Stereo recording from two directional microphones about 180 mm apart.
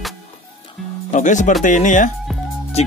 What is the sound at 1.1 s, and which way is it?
Speech, 45° left (ahead or behind).